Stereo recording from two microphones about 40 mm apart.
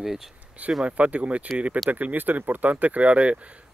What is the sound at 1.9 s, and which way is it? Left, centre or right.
Speech, right.